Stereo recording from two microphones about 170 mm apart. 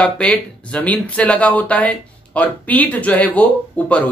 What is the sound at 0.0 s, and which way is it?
Speech, 10° left (ahead or behind).